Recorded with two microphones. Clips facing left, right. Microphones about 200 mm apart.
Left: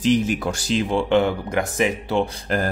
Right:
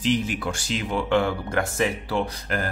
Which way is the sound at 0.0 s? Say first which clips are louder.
Left 5 dB; 40° left (ahead or behind).